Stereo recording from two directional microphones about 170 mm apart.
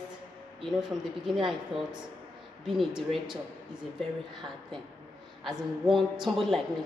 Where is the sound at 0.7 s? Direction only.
5° right (ahead or behind).